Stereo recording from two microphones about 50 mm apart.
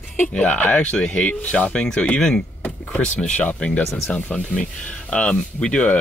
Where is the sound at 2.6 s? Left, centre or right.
Left.